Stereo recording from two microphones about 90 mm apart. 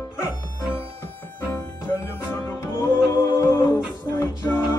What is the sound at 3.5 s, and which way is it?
A capella, 50° left (ahead or behind).